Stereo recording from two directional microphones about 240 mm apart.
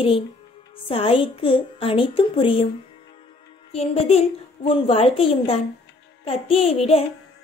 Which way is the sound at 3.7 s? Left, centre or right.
Left.